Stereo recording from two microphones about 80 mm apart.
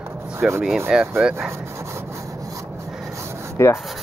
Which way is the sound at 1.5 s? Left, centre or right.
Right.